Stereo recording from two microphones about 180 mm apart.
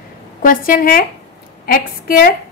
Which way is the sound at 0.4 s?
50° left (ahead or behind).